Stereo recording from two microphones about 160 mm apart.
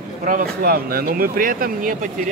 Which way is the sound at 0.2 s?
60° right (ahead or behind).